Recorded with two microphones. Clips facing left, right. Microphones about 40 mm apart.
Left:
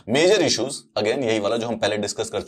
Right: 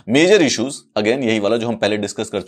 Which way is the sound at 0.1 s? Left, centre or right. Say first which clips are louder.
Right 5 dB; right.